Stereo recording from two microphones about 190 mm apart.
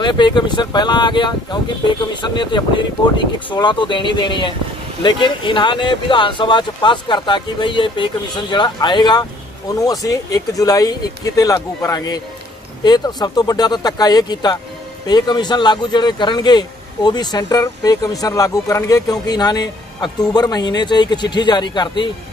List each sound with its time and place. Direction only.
0.0 s speech: 25° left (ahead or behind)